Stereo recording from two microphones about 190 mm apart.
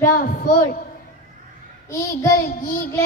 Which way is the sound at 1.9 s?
15° left (ahead or behind).